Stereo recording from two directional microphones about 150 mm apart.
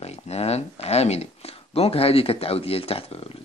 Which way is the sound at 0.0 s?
45° left (ahead or behind).